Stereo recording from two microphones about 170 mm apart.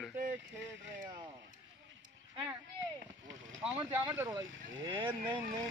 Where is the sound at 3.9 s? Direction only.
10° right (ahead or behind).